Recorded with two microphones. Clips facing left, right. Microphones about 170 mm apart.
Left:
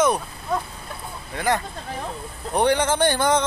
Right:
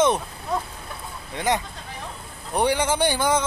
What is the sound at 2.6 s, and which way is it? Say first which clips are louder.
Speech: left 2 dB; 10° right (ahead or behind).